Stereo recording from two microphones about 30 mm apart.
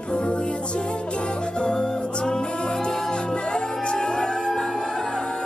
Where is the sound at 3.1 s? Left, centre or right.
Left.